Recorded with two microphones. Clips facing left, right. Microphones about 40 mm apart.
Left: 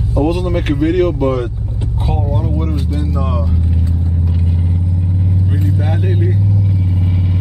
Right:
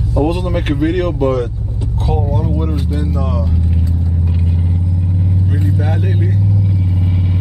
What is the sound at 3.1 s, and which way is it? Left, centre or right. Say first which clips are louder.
Speech: even; centre.